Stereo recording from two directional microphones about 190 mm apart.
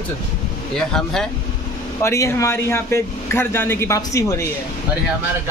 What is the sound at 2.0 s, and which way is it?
Speech, 15° left (ahead or behind).